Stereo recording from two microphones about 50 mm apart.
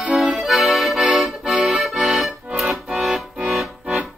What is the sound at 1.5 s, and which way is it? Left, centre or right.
Accordion, centre.